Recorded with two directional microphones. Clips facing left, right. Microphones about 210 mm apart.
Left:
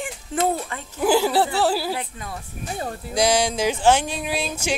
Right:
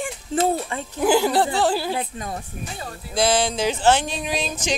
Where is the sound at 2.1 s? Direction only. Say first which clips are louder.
Right 4 dB; 35° right (ahead or behind).